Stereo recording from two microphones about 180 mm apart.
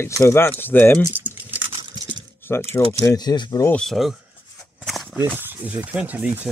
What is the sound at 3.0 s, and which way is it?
Speech, 20° left (ahead or behind).